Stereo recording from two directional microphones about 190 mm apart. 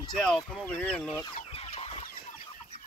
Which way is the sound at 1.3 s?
30° left (ahead or behind).